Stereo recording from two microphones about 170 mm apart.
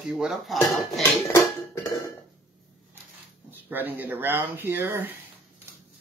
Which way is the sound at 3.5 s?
10° right (ahead or behind).